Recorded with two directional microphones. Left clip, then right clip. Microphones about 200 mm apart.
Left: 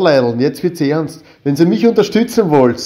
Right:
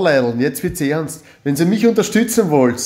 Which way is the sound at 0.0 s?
5° left (ahead or behind).